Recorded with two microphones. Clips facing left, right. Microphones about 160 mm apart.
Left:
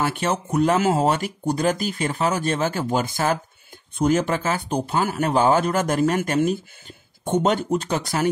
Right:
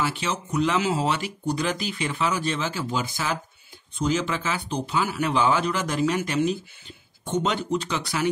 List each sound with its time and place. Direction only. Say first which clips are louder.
0.0 s speech: left 4 dB; 50° left (ahead or behind)